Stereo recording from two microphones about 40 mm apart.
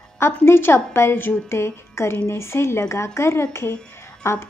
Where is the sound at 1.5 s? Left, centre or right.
Left.